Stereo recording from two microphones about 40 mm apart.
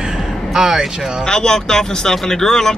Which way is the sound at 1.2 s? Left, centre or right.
Centre.